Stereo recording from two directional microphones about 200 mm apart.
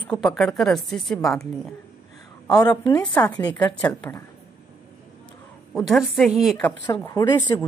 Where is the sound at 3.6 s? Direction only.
5° left (ahead or behind).